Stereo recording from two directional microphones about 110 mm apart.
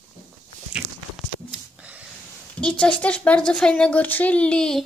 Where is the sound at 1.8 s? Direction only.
10° right (ahead or behind).